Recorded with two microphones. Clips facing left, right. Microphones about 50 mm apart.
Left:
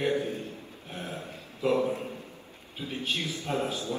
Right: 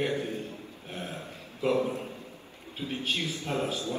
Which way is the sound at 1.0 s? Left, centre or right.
Left.